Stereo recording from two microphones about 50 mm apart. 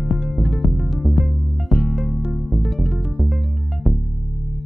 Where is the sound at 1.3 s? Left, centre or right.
Right.